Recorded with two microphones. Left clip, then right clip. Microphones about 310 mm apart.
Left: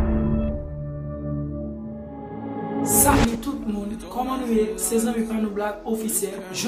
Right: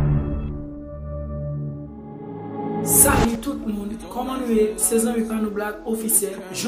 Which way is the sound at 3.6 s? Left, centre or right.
Centre.